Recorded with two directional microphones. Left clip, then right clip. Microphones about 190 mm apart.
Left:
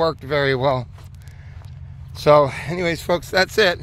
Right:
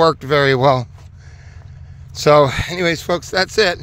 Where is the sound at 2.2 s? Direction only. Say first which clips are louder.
Right 3 dB; 45° right (ahead or behind).